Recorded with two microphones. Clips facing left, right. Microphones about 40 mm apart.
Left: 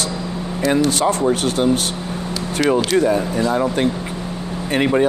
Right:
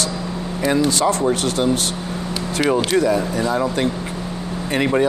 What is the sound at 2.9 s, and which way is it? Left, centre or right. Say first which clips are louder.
Speech: left 1 dB; left.